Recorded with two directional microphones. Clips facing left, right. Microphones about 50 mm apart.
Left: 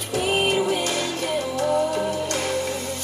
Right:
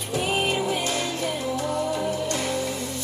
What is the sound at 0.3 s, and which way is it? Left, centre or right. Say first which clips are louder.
Music: left 4 dB; left.